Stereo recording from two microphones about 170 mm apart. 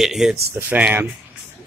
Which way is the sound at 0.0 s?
Centre (ahead or behind).